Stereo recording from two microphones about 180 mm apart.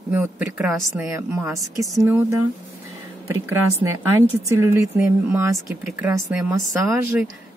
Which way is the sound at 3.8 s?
15° right (ahead or behind).